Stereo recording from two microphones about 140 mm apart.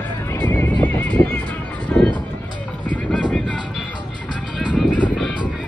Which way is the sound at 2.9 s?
5° left (ahead or behind).